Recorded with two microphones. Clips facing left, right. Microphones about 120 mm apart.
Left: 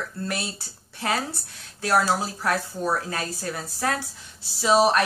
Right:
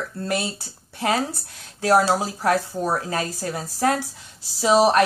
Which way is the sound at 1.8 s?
30° right (ahead or behind).